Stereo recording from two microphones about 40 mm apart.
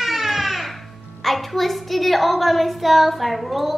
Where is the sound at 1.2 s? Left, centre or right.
Centre.